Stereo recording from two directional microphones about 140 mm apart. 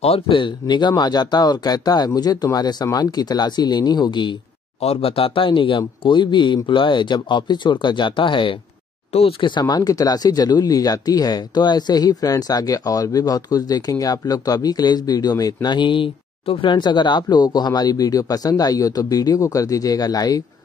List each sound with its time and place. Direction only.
0.0 s speech: 40° left (ahead or behind)
4.7 s speech: 45° left (ahead or behind); by 20.4 s 25° left (ahead or behind)